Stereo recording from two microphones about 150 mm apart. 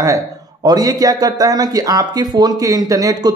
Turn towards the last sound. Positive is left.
turn(degrees=-25)  # may be behind; listen again after turning